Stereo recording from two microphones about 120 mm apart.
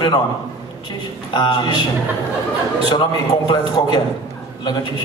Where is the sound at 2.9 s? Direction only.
35° left (ahead or behind).